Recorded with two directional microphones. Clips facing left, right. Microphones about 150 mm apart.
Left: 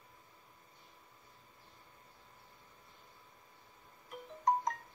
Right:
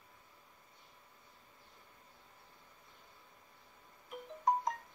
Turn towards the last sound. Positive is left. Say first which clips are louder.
# left 1 dB
turn(degrees=0)  # may be behind; listen again after turning